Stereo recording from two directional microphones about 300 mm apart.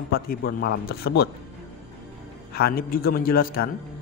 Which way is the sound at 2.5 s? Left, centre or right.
Left.